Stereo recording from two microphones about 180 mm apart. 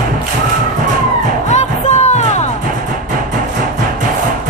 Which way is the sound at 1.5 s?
40° left (ahead or behind).